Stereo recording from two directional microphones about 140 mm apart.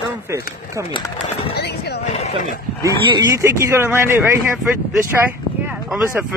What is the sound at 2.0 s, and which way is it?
Horse, 55° left (ahead or behind).